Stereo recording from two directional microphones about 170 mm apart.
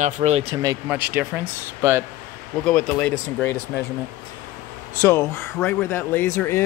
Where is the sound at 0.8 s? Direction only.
10° right (ahead or behind).